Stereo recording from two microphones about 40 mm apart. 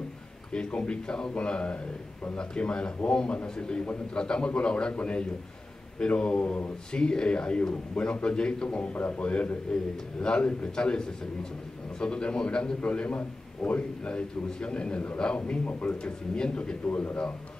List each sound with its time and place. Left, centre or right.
0.5 s a man's voice: left
14.0 s a man's voice: left
16.8 s a man's voice: left